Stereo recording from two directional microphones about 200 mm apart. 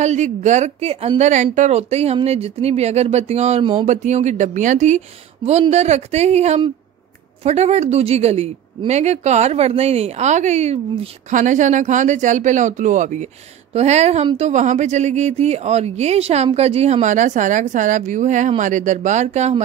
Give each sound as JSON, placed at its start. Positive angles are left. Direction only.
{"t": 0.0, "sound": "a woman's voice", "side_deg": -35}